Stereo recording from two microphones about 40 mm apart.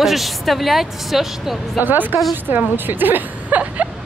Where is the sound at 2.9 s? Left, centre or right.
Right.